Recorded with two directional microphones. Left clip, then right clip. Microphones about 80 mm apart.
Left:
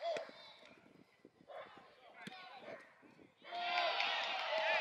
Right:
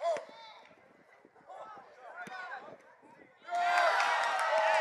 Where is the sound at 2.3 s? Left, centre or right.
Right.